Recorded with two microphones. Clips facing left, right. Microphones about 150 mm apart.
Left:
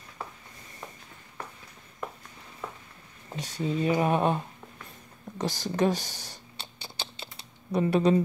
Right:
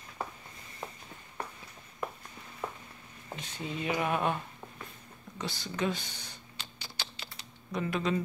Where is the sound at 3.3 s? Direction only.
35° left (ahead or behind).